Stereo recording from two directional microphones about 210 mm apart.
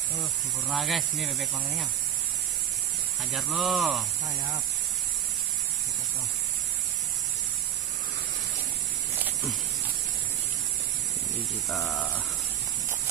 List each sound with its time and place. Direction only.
0.7 s speech: centre (ahead or behind)
3.3 s speech: centre (ahead or behind)
9.2 s a sound: centre (ahead or behind)
11.7 s speech: centre (ahead or behind)